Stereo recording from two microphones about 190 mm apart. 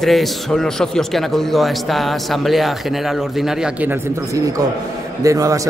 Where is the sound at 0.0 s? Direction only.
Centre (ahead or behind).